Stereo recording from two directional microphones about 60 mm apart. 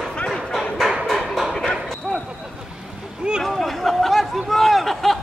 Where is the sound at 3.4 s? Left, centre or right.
Centre.